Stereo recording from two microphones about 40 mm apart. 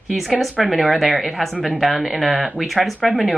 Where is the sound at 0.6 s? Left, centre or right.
Centre.